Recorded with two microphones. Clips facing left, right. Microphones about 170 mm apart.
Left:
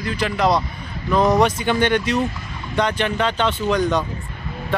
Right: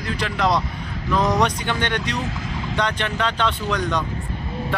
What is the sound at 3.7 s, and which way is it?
Speech, 30° left (ahead or behind).